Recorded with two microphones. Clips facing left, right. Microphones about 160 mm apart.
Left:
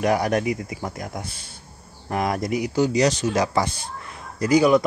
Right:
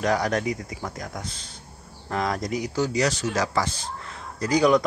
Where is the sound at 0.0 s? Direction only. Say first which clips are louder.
Left 3 dB; 10° left (ahead or behind).